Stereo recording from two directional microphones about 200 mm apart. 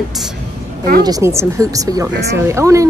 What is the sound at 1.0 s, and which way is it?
Speech, 15° right (ahead or behind).